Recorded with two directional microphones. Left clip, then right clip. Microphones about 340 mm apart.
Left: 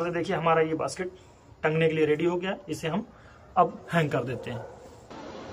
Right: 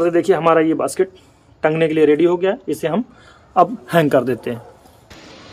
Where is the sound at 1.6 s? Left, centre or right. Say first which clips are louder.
Right 10 dB; centre.